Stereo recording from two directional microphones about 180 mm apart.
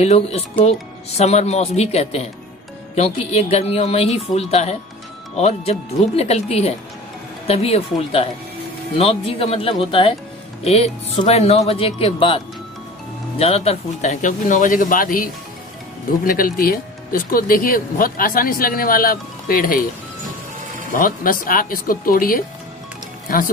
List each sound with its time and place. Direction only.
0.0 s speech: 35° left (ahead or behind)
13.4 s speech: 35° left (ahead or behind); by 19.9 s 50° left (ahead or behind)
20.9 s speech: 50° left (ahead or behind)